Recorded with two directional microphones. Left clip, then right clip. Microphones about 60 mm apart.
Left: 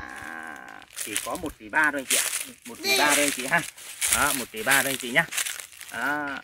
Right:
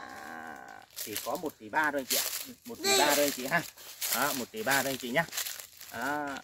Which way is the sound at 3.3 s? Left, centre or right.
Right.